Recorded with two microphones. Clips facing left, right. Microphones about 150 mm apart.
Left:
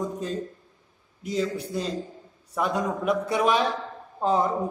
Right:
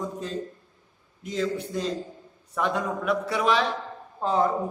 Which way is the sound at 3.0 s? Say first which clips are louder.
Left 2 dB; 20° left (ahead or behind).